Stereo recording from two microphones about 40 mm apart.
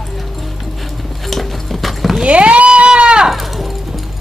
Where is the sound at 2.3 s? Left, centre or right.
Right.